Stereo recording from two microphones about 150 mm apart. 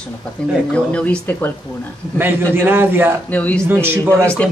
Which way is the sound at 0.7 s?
10° left (ahead or behind).